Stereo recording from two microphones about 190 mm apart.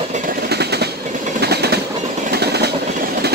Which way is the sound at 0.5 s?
60° right (ahead or behind).